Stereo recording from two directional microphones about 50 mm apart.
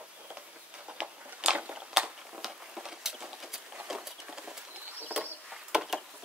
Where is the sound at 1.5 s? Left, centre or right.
Right.